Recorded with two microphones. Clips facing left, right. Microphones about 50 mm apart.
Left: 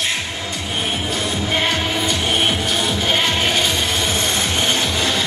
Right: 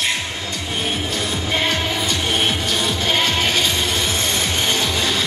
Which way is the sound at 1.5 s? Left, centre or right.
Centre.